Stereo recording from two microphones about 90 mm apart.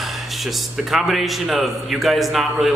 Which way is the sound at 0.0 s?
Centre (ahead or behind).